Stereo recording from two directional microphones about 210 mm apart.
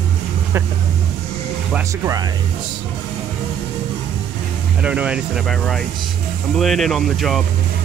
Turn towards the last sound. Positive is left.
turn(degrees=0)  # may be behind; listen again after turning